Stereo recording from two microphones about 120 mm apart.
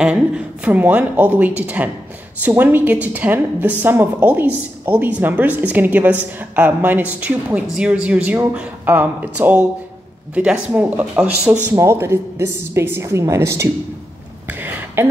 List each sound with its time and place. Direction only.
0.0 s a woman's voice: 10° right (ahead or behind)
11.7 s a woman's voice: 20° right (ahead or behind)
14.5 s a sound: 15° right (ahead or behind)